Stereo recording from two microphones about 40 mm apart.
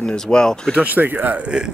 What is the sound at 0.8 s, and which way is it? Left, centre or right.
Speech, right.